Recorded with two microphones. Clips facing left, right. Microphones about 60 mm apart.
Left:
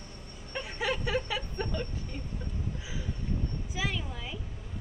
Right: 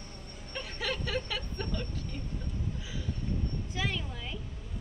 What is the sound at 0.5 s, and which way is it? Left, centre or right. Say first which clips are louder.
Vehicle: left 3 dB; centre.